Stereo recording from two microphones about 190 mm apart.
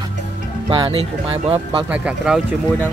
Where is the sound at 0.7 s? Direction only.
25° right (ahead or behind).